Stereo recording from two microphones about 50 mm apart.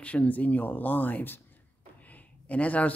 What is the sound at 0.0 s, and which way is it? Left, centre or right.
Speech, left.